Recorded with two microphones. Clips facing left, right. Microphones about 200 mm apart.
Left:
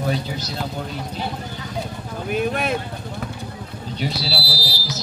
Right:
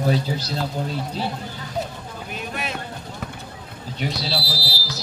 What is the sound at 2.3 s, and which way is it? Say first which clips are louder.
Speech: left 10 dB; 55° left (ahead or behind).